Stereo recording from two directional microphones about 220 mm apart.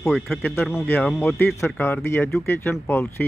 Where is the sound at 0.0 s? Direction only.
Centre (ahead or behind).